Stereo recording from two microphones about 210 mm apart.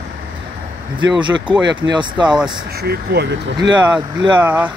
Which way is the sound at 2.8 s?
50° right (ahead or behind).